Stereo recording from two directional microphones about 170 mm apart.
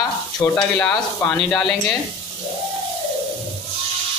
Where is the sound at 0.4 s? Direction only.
10° left (ahead or behind).